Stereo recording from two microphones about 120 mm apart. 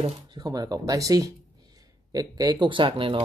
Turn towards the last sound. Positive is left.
turn(degrees=-45)  # may be behind; listen again after turning